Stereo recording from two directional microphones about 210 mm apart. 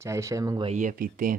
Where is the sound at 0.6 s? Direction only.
35° right (ahead or behind).